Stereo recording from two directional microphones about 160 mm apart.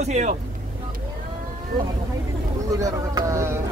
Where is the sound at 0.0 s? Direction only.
45° right (ahead or behind).